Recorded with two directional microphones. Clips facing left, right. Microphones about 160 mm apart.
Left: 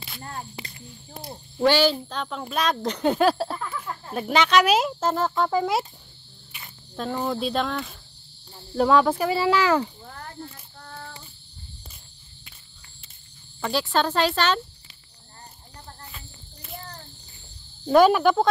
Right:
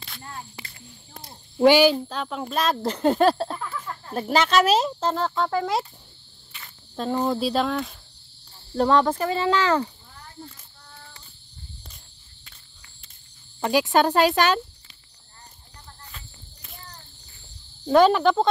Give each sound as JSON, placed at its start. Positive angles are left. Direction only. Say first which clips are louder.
{"t": 0.2, "sound": "speech", "louder": "left 3 dB", "side_deg": 45}
{"t": 0.6, "sound": "speech", "louder": "left 4 dB", "side_deg": 20}
{"t": 1.6, "sound": "speech", "louder": "right 4 dB", "side_deg": -15}
{"t": 6.5, "sound": "cricket", "louder": "left 1 dB", "side_deg": 15}
{"t": 7.0, "sound": "speech", "louder": "right 3 dB", "side_deg": 0}
{"t": 10.0, "sound": "a sound", "louder": "left 5 dB", "side_deg": 70}
{"t": 13.7, "sound": "speech", "louder": "right 4 dB", "side_deg": -15}
{"t": 16.1, "sound": "cricket", "louder": "left 1 dB", "side_deg": 5}
{"t": 17.8, "sound": "speech", "louder": "even", "side_deg": 10}